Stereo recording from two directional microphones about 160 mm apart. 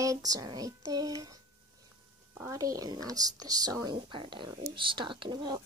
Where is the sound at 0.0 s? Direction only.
20° right (ahead or behind).